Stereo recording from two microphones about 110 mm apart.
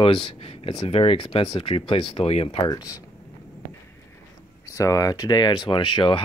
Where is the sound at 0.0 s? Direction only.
55° left (ahead or behind).